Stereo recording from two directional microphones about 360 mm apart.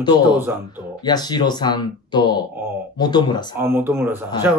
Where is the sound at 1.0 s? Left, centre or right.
Centre.